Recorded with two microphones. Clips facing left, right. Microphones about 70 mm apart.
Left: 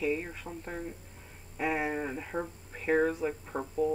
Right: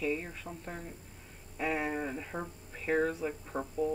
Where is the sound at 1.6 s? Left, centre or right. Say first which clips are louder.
Left 2 dB; centre.